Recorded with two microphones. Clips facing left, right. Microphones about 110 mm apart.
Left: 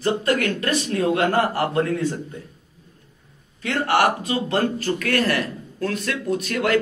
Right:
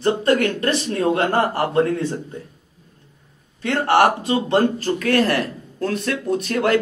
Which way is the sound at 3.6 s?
35° right (ahead or behind).